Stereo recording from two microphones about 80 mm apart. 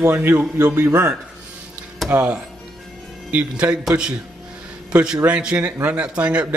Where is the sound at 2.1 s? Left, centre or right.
Centre.